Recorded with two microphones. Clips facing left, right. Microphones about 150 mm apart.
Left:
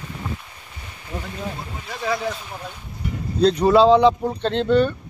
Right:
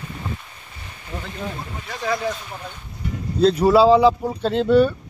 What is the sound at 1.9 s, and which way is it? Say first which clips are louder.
Speech: right 1 dB; centre (ahead or behind).